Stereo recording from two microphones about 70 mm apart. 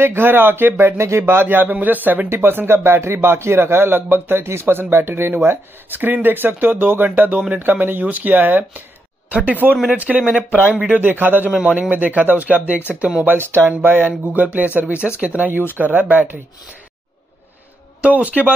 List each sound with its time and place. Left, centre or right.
0.0 s a man's voice: right
1.2 s a man's voice: right; by 10.9 s centre
10.9 s speech: right
18.0 s speech: right